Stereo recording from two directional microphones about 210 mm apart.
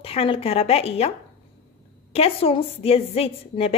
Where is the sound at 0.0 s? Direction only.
25° left (ahead or behind).